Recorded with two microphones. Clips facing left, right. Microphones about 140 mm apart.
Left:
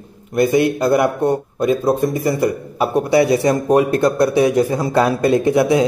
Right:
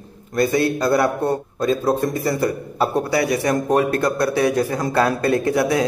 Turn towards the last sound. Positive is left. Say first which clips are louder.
# left 4 dB
turn(degrees=20)  # may be behind; listen again after turning